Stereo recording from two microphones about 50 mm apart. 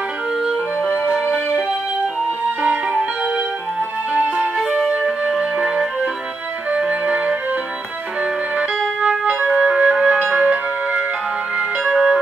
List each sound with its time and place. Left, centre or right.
2.6 s music: right
4.6 s music: centre
9.6 s music: right
11.8 s music: centre